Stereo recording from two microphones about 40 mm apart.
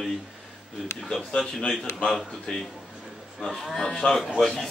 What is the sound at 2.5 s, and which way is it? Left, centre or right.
Speech, centre.